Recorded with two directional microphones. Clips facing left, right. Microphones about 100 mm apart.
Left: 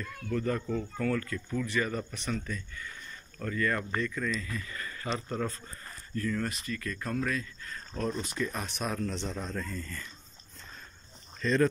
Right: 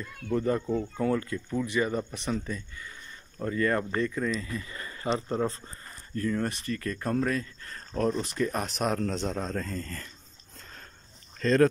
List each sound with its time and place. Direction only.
0.0 s speech: 25° right (ahead or behind); by 8.6 s 50° right (ahead or behind)
8.7 s a man's voice: 60° right (ahead or behind)